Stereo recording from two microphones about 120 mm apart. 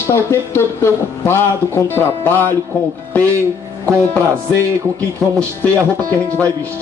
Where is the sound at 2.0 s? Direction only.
20° left (ahead or behind).